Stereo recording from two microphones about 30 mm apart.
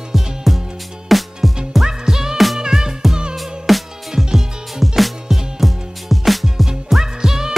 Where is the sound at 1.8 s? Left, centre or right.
Centre.